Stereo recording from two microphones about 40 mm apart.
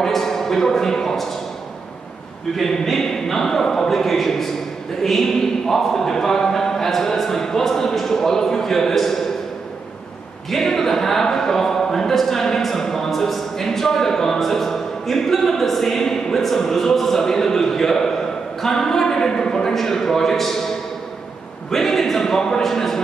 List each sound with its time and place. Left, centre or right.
0.0 s speech: centre
2.5 s speech: centre
10.5 s speech: centre